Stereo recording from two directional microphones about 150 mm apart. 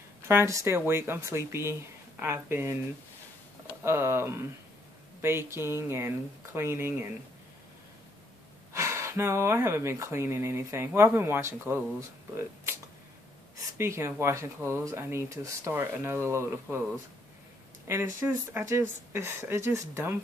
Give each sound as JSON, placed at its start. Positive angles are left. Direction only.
{"t": 0.3, "sound": "speech", "side_deg": -20}
{"t": 3.8, "sound": "speech", "side_deg": -15}
{"t": 8.7, "sound": "speech", "side_deg": -20}
{"t": 13.7, "sound": "speech", "side_deg": -20}
{"t": 17.8, "sound": "speech", "side_deg": -15}